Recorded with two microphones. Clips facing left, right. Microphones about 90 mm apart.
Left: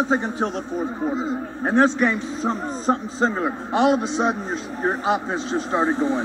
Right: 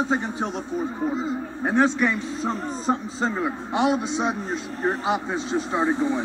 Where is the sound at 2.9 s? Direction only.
40° left (ahead or behind).